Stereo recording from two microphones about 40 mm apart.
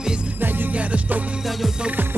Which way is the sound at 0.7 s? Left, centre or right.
Right.